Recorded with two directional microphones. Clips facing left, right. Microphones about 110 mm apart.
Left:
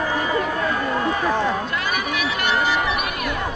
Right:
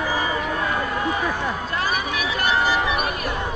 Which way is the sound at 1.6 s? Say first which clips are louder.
Even; 35° right (ahead or behind).